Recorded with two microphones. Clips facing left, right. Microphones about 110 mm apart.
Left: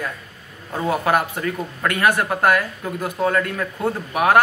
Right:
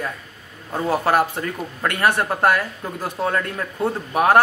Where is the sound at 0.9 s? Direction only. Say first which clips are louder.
Right 1 dB; 35° right (ahead or behind).